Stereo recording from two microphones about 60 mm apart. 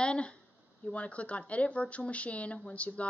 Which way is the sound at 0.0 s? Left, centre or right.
Centre.